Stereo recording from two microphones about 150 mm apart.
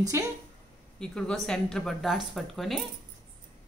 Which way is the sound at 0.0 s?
25° right (ahead or behind).